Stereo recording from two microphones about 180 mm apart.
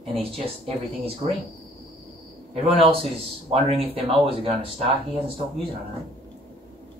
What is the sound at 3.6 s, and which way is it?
Speech, 30° right (ahead or behind).